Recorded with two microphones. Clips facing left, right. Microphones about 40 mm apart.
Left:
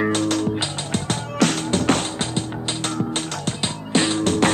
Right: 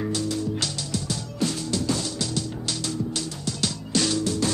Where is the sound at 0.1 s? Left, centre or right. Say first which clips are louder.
Left 6 dB; left.